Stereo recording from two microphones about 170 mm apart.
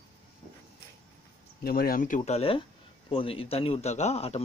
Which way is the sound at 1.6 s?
60° left (ahead or behind).